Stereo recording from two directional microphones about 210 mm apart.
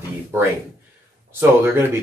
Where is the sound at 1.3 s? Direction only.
15° right (ahead or behind).